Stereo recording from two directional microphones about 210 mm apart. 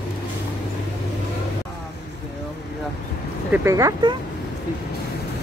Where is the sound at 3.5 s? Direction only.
15° right (ahead or behind).